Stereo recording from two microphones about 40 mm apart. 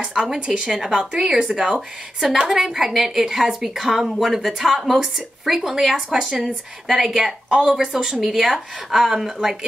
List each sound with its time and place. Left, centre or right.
0.2 s a woman's voice: centre